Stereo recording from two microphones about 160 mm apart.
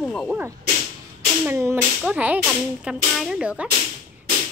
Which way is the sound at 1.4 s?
15° right (ahead or behind).